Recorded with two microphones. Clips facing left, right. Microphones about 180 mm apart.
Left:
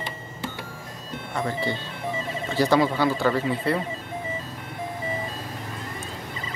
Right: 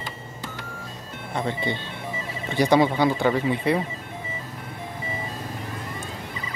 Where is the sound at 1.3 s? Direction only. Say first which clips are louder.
Even; 20° right (ahead or behind).